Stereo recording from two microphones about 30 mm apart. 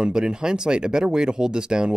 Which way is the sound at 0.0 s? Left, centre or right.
Right.